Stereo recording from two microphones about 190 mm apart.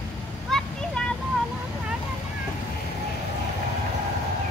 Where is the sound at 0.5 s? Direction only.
Centre (ahead or behind).